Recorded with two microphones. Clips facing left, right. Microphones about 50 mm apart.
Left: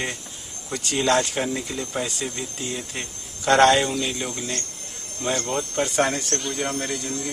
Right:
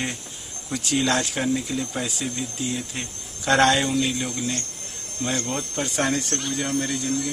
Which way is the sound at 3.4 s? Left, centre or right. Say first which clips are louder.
Left 2 dB; centre.